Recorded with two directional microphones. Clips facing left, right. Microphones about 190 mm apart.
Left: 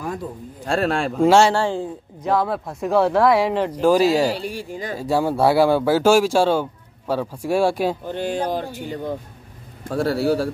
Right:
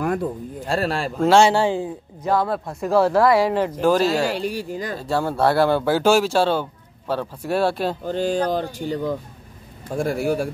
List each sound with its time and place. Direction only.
0.0 s a sound: 65° right (ahead or behind)
0.7 s speech: centre (ahead or behind)
1.1 s speech: 10° left (ahead or behind)
1.5 s speech: 20° right (ahead or behind)
1.8 s speech: centre (ahead or behind); by 4.4 s 15° left (ahead or behind)
4.4 s speech: 40° right (ahead or behind)
4.9 s speech: 10° left (ahead or behind)
8.7 s speech: 35° right (ahead or behind)
9.8 s a man's voice: 15° right (ahead or behind)